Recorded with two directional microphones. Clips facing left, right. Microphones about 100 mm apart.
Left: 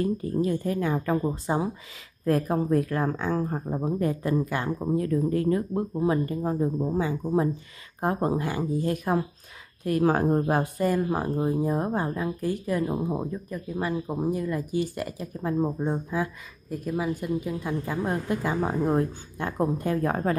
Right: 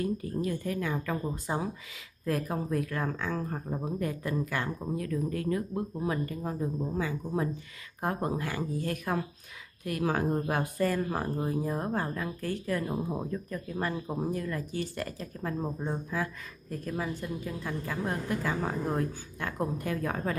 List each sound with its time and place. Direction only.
0.0 s speech: 30° left (ahead or behind)
2.2 s speech: 40° left (ahead or behind)
10.0 s speech: 45° left (ahead or behind)
10.6 s speech: 15° left (ahead or behind); by 20.3 s 35° left (ahead or behind)